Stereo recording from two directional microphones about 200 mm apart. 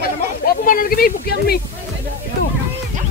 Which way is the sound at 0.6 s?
45° left (ahead or behind).